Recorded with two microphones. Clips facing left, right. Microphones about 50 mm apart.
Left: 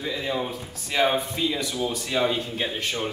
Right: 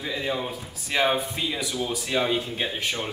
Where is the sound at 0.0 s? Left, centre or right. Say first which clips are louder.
Left 1 dB; centre.